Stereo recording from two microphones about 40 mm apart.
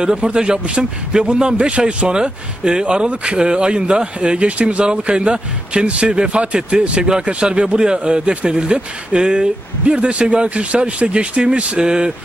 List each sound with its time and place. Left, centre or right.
0.0 s speech: right
11.8 s speech: centre